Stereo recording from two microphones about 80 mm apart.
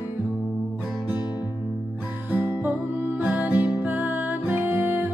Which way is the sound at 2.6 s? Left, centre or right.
Right.